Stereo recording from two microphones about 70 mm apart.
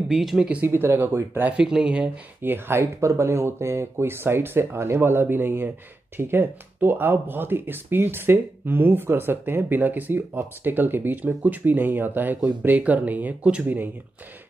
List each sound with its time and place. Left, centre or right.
0.1 s speech: centre
0.7 s speech: right
1.6 s speech: centre
2.4 s speech: right